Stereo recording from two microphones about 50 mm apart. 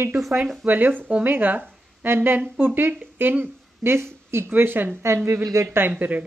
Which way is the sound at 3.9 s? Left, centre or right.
Right.